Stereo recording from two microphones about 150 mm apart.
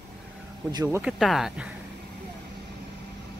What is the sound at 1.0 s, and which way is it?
Speech, centre (ahead or behind).